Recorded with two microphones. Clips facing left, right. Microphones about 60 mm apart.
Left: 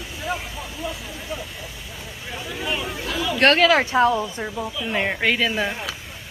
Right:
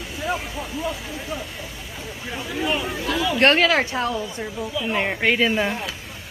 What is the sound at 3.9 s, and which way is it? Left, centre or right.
Speech, centre.